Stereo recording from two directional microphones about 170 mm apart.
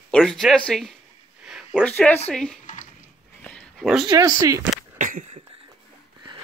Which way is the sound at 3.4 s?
5° left (ahead or behind).